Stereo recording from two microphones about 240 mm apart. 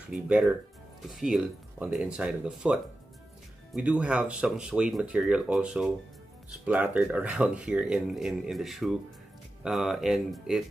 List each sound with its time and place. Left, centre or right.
0.0 s speech: centre